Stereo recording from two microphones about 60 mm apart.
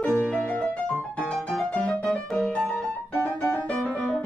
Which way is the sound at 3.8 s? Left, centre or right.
Centre.